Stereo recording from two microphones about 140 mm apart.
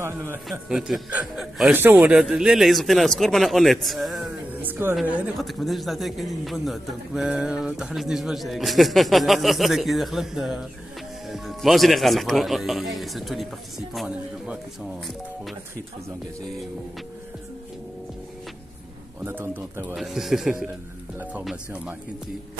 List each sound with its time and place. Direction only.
0.5 s a man's voice: 5° right (ahead or behind)
4.6 s a sound: 15° right (ahead or behind)
5.4 s a man's voice: centre (ahead or behind)
19.2 s speech: 15° right (ahead or behind)
20.0 s a man's voice: centre (ahead or behind)